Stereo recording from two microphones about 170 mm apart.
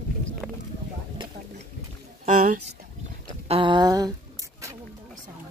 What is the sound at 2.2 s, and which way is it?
Speech, 45° right (ahead or behind).